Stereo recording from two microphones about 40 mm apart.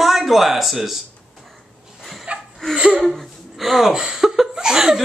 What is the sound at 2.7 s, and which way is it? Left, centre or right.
Speech, right.